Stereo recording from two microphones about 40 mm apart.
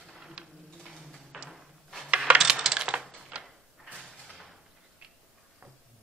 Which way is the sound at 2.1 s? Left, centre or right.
Right.